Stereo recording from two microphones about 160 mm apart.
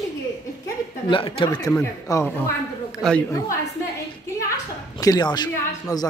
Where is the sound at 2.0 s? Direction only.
20° left (ahead or behind).